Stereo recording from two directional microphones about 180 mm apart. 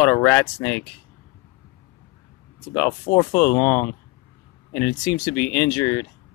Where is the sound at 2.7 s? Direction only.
15° left (ahead or behind).